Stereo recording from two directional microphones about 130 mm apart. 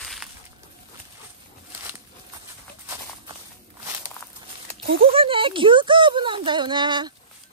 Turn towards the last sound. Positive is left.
turn(degrees=-35)  # may be behind; listen again after turning